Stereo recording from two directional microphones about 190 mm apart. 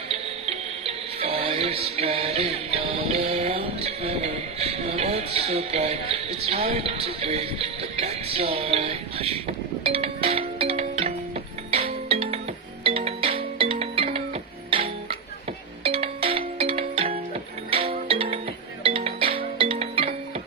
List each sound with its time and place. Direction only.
0.1 s music: 30° right (ahead or behind)